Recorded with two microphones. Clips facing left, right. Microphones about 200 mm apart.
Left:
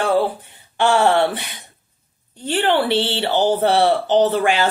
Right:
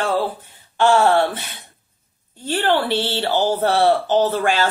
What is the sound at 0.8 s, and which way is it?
Speech, 15° left (ahead or behind).